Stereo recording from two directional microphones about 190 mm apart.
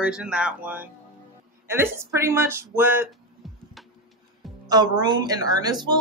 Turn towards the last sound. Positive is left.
turn(degrees=-20)  # may be behind; listen again after turning